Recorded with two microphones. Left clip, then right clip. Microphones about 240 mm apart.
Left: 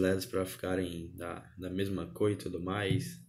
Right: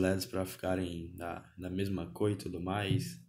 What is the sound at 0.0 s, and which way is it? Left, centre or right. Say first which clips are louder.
Speech: left 2 dB; right.